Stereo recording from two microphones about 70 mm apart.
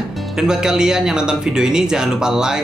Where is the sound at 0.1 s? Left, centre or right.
Centre.